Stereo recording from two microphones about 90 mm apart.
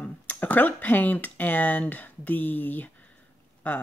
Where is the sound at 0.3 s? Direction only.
20° left (ahead or behind).